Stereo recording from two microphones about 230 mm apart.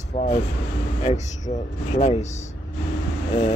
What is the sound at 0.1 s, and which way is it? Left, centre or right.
Speech, left.